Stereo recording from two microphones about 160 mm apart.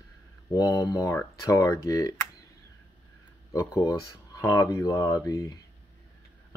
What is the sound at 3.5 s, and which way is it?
Speech, 20° left (ahead or behind).